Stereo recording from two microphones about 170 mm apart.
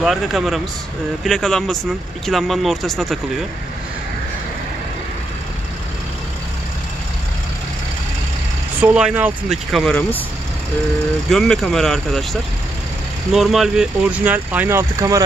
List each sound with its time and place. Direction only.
0.0 s speech: centre (ahead or behind)
8.8 s speech: 10° right (ahead or behind); by 10.2 s 5° left (ahead or behind)
11.2 s speech: 5° left (ahead or behind); by 15.2 s 20° right (ahead or behind)